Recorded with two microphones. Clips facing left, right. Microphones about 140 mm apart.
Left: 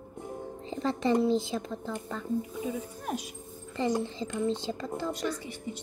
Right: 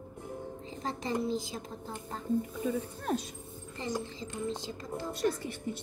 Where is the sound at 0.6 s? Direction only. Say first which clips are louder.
Left 9 dB; 70° left (ahead or behind).